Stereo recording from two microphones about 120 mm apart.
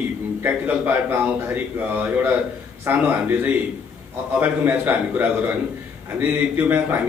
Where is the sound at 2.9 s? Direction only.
15° right (ahead or behind).